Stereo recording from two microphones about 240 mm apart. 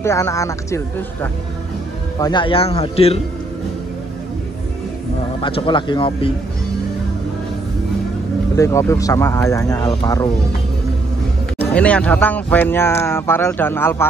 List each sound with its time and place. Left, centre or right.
0.0 s speech: centre
5.4 s speech: left
8.5 s speech: centre
11.5 s speech: centre